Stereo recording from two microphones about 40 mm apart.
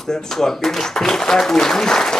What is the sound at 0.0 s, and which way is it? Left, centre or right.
Speech, centre.